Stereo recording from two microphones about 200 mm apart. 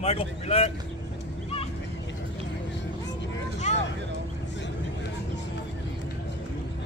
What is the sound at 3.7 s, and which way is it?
Vehicle, 35° left (ahead or behind).